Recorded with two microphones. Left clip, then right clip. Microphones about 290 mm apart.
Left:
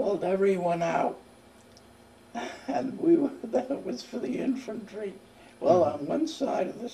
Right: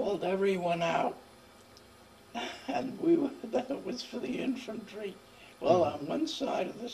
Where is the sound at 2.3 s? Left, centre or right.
Centre.